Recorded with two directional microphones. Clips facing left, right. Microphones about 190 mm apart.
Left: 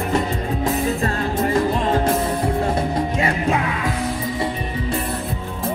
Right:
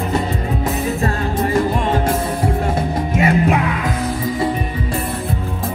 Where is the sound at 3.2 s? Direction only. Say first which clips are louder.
Right 9 dB; 25° right (ahead or behind).